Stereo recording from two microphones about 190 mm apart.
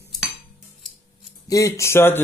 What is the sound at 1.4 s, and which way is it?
Speech, 15° left (ahead or behind).